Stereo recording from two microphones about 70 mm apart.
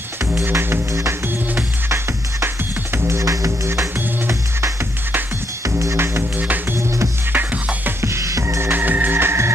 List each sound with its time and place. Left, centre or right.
0.5 s music: right
2.4 s music: right
6.4 s music: right
8.0 s music: right